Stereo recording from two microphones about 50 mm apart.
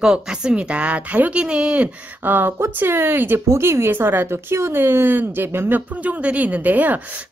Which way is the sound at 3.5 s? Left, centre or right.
Right.